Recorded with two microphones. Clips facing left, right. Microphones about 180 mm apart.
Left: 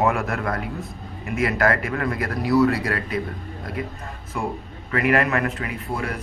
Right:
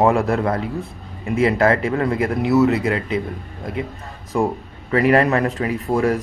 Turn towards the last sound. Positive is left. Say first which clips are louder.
# right 9 dB
turn(degrees=-40)  # may be behind; listen again after turning